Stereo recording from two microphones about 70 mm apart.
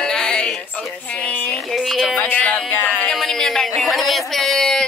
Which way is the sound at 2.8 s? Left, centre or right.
Centre.